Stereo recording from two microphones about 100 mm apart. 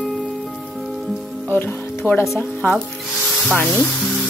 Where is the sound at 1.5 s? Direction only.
20° left (ahead or behind).